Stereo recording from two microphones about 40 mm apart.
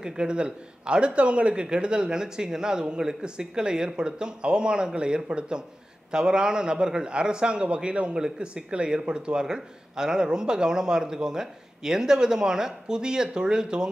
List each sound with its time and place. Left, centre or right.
0.0 s speech: right